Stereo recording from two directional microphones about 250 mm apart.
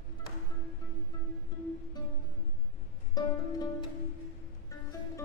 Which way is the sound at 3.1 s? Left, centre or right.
Centre.